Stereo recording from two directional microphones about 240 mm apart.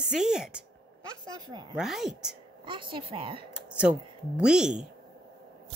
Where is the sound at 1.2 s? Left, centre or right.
Centre.